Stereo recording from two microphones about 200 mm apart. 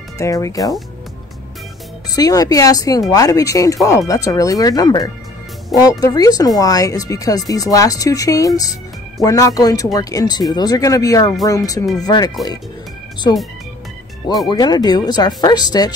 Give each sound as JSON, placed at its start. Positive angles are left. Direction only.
{"t": 0.2, "sound": "speech", "side_deg": 15}
{"t": 2.0, "sound": "speech", "side_deg": 20}
{"t": 14.5, "sound": "speech", "side_deg": 20}